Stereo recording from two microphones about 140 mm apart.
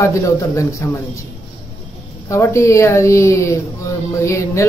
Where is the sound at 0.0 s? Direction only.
20° left (ahead or behind).